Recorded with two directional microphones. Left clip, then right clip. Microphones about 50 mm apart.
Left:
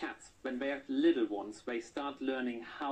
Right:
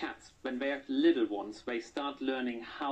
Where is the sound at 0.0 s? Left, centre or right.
Centre.